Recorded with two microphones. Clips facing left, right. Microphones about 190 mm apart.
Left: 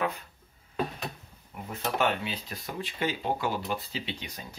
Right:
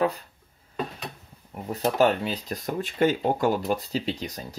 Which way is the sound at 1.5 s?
40° right (ahead or behind).